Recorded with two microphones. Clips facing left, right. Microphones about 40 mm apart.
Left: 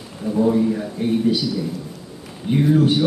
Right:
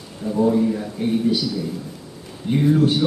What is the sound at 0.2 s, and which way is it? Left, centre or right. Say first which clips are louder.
A man's voice: even; centre.